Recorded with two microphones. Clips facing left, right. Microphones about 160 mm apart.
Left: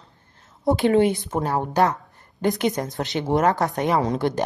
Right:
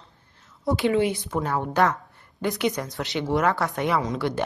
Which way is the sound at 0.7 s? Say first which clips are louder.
Left 4 dB; 50° left (ahead or behind).